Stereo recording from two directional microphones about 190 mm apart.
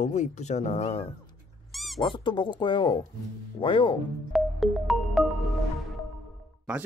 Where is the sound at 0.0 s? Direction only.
40° left (ahead or behind).